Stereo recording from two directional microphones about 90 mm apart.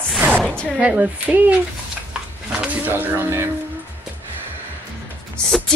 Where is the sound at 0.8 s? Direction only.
15° right (ahead or behind).